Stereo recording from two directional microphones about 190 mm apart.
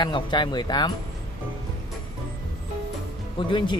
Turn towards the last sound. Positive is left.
turn(degrees=25)  # may be behind; listen again after turning